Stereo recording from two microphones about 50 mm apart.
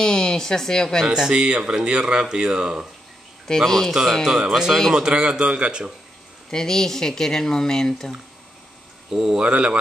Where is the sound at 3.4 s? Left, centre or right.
Centre.